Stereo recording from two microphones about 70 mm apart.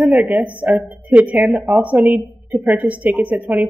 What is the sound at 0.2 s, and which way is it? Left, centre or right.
A woman's voice, right.